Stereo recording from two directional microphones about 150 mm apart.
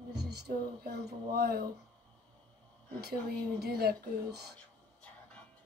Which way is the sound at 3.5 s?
90° right.